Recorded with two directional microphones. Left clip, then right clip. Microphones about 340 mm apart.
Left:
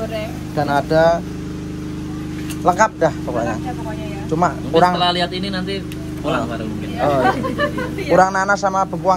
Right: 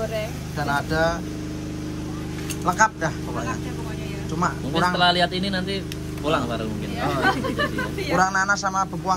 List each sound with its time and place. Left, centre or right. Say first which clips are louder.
0.6 s speech: left 8 dB; centre
2.6 s speech: left 6 dB; centre
4.9 s speech: left 1 dB; right
7.0 s speech: left 6 dB; centre